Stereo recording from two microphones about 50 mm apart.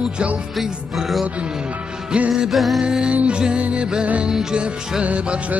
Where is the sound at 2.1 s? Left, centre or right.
Centre.